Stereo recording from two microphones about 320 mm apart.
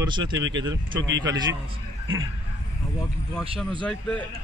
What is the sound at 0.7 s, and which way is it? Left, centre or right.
Speech, centre.